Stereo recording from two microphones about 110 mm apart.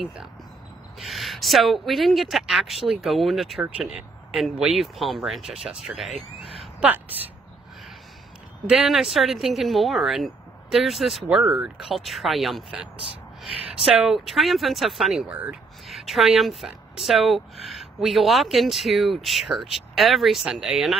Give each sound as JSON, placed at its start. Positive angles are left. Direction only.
{"t": 0.9, "sound": "a woman's voice", "side_deg": 0}
{"t": 6.8, "sound": "a woman's voice", "side_deg": -15}
{"t": 8.6, "sound": "a woman's voice", "side_deg": -5}
{"t": 13.8, "sound": "a woman's voice", "side_deg": -5}
{"t": 15.9, "sound": "a woman's voice", "side_deg": 0}